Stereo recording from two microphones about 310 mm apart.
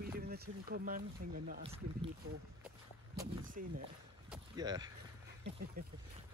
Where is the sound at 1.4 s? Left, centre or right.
Centre.